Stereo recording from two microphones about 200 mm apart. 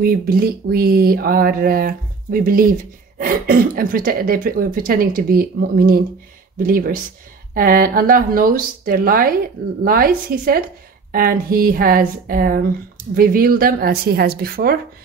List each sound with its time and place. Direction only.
0.0 s speech: 50° right (ahead or behind)